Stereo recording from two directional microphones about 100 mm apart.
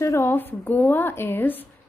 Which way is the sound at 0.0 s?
25° left (ahead or behind).